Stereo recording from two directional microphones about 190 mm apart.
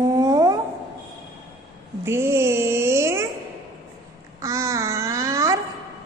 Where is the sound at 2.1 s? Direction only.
15° right (ahead or behind).